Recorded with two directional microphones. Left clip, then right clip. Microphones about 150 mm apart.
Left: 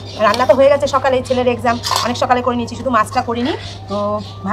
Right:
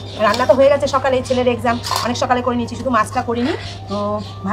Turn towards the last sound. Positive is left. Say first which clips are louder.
# left 2 dB
turn(degrees=10)  # may be behind; listen again after turning